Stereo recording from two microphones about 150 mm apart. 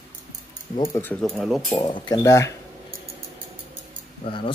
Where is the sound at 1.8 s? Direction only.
30° left (ahead or behind).